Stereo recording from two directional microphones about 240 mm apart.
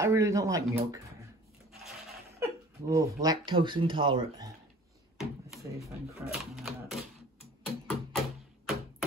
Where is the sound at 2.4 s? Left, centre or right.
Centre.